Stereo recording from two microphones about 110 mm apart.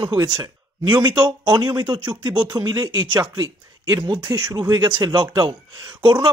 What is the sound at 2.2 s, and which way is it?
Speech, 50° right (ahead or behind).